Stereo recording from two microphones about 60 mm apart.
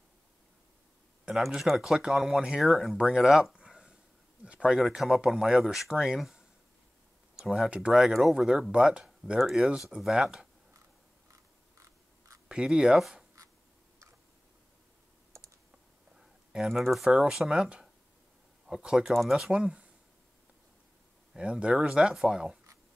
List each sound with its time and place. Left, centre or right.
1.4 s speech: centre
3.5 s a sound: centre
4.5 s speech: centre
4.7 s speech: centre
9.4 s speech: centre
12.4 s speech: centre
16.2 s speech: centre
21.4 s speech: centre